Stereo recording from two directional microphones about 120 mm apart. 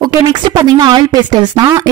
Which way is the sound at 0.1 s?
35° right (ahead or behind).